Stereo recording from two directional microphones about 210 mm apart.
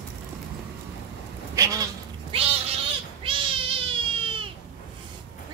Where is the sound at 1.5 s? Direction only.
15° right (ahead or behind).